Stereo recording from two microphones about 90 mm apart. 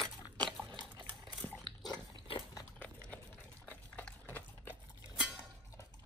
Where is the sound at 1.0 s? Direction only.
20° left (ahead or behind).